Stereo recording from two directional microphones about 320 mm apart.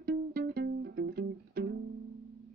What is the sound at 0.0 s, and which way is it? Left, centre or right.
Music, right.